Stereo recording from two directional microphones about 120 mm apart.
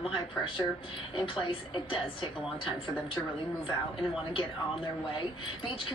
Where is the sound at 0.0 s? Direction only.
45° left (ahead or behind).